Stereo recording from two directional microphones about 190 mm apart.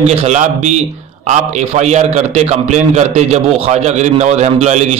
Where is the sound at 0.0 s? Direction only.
35° right (ahead or behind).